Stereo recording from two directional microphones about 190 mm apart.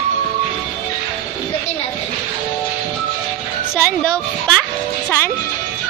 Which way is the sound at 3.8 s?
5° left (ahead or behind).